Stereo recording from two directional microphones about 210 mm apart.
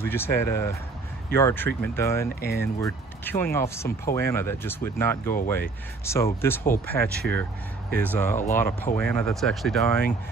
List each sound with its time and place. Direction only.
0.0 s speech: 10° left (ahead or behind)
5.2 s speech: 45° left (ahead or behind)
6.0 s speech: 15° left (ahead or behind)